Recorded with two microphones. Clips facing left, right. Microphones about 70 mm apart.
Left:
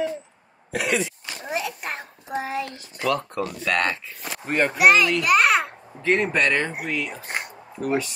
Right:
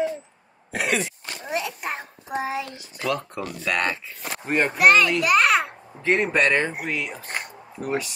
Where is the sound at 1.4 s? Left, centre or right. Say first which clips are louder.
Even; centre.